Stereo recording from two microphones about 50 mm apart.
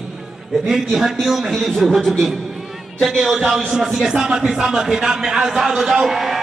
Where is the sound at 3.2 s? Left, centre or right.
Centre.